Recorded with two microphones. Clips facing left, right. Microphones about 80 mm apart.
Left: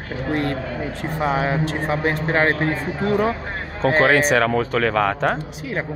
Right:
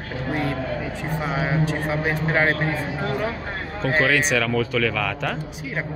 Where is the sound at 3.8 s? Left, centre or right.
Left.